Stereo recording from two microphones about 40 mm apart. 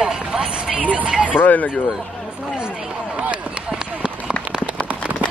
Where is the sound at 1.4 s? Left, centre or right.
Left.